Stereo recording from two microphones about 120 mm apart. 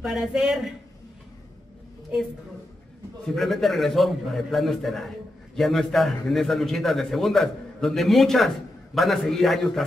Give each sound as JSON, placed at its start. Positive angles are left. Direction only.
{"t": 0.0, "sound": "a man's voice", "side_deg": -5}
{"t": 3.3, "sound": "a man's voice", "side_deg": 0}